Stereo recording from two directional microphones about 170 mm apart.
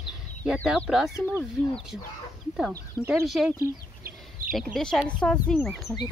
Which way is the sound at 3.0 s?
5° right (ahead or behind).